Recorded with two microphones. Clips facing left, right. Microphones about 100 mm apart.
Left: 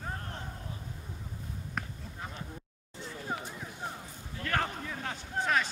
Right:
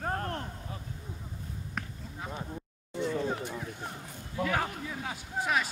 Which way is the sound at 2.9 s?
65° right (ahead or behind).